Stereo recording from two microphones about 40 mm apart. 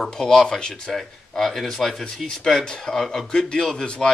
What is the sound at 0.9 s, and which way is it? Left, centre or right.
Speech, centre.